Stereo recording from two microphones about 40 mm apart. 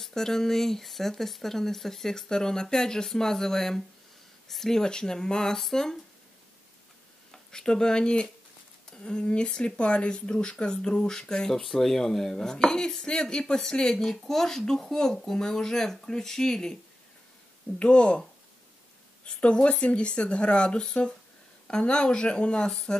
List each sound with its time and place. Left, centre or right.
0.0 s speech: centre
7.2 s speech: centre
17.7 s speech: left
19.2 s speech: left
22.7 s speech: centre